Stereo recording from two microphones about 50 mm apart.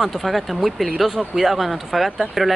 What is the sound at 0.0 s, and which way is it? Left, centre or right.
Speech, centre.